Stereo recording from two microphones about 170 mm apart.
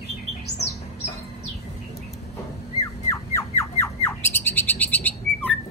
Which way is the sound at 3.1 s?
15° left (ahead or behind).